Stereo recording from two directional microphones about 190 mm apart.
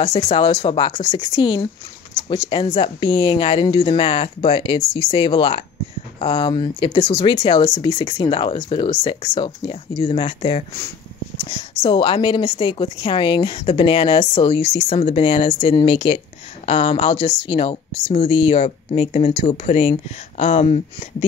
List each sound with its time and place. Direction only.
0.0 s a woman's voice: 25° left (ahead or behind)